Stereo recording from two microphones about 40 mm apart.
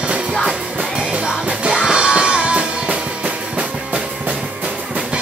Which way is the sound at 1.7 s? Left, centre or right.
Centre.